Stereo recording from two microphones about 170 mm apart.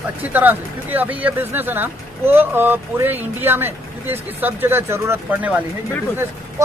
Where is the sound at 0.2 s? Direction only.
10° right (ahead or behind).